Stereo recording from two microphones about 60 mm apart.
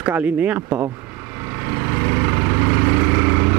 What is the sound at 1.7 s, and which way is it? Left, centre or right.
Vehicle, right.